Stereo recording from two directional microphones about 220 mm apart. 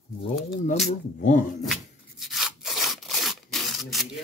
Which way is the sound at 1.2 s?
35° left (ahead or behind).